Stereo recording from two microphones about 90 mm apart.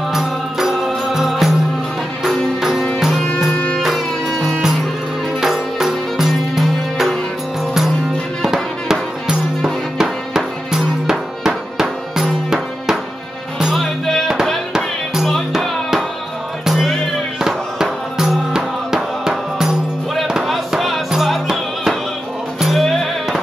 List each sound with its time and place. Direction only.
0.1 s music: 5° right (ahead or behind)
8.4 s music: 5° right (ahead or behind)